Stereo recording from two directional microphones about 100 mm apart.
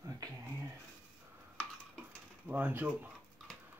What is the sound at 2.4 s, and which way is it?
Speech, 15° right (ahead or behind).